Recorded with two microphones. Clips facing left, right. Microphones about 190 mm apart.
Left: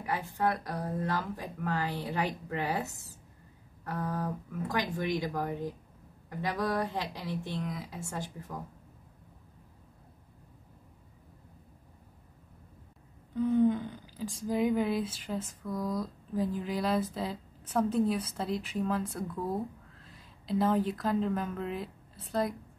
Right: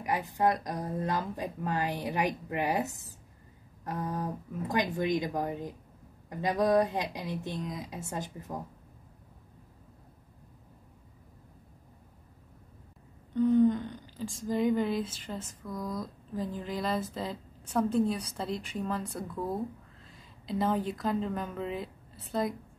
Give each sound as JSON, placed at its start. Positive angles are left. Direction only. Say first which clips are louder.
{"t": 0.0, "sound": "speech", "louder": "right 3 dB", "side_deg": -15}
{"t": 13.3, "sound": "a sound", "louder": "right 2 dB", "side_deg": 5}
{"t": 14.5, "sound": "a woman's voice", "louder": "even", "side_deg": 5}